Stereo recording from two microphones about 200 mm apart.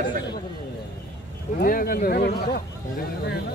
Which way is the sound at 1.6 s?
45° left (ahead or behind).